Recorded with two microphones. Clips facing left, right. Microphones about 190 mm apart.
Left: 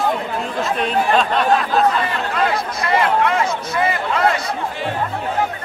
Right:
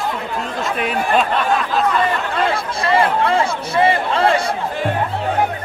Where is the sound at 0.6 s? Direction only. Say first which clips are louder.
Left 2 dB; 10° right (ahead or behind).